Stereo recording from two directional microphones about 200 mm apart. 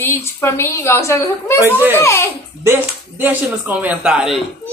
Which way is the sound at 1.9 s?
15° left (ahead or behind).